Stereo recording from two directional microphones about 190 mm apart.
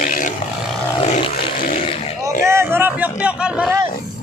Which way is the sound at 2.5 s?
10° right (ahead or behind).